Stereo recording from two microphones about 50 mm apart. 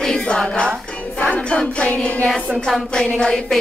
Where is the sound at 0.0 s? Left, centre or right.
Centre.